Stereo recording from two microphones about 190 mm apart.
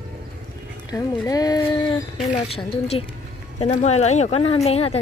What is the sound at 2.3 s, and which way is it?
Speech, 30° left (ahead or behind).